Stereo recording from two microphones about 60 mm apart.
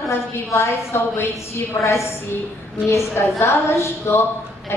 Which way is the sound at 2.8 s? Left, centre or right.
Left.